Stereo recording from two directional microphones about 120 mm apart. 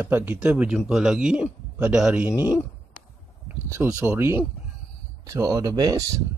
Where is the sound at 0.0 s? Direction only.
15° right (ahead or behind).